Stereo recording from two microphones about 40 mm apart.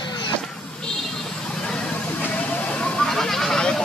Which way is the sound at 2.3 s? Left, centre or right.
Left.